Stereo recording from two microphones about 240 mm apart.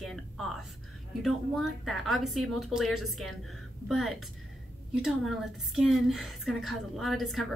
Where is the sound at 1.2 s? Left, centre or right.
Centre.